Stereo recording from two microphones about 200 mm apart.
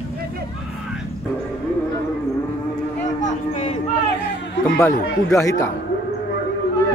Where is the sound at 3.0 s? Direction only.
30° left (ahead or behind).